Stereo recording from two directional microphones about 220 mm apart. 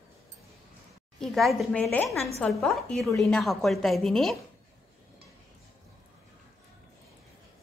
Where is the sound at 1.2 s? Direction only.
Centre (ahead or behind).